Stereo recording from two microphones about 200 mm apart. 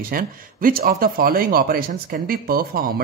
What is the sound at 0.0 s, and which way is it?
Speech, 45° right (ahead or behind).